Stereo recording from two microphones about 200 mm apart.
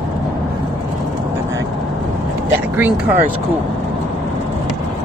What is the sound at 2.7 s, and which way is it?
Speech, 5° right (ahead or behind).